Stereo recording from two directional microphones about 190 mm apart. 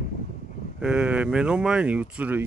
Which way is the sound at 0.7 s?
5° right (ahead or behind).